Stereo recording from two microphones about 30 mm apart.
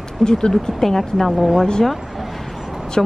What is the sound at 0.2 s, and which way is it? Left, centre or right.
Speech, left.